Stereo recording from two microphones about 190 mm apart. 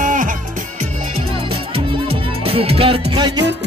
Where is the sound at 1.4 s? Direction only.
30° right (ahead or behind).